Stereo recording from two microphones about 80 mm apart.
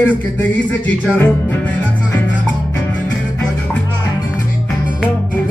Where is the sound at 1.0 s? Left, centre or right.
Left.